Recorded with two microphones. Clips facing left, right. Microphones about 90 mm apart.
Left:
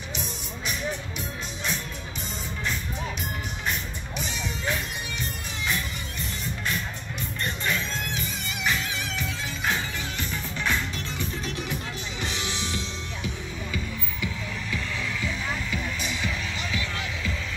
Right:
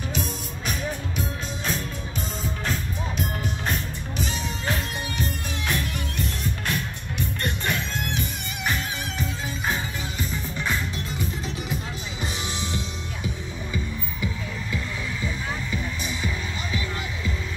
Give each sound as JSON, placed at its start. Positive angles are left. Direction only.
{"t": 0.2, "sound": "music", "side_deg": -45}
{"t": 4.2, "sound": "music", "side_deg": -40}
{"t": 10.3, "sound": "music", "side_deg": -10}
{"t": 16.1, "sound": "music", "side_deg": -35}